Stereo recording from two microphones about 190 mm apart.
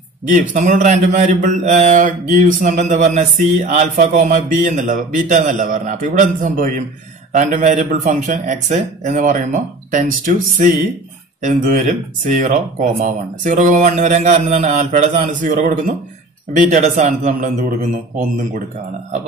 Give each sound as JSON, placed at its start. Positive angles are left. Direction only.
{"t": 0.3, "sound": "a man's voice", "side_deg": -40}